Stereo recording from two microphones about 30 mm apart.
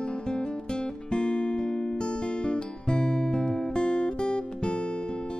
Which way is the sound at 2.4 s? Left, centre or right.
Left.